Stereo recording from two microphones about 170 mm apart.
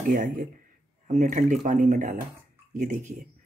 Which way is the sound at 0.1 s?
50° right (ahead or behind).